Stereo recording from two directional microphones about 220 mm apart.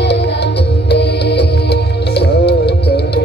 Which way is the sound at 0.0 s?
50° left (ahead or behind).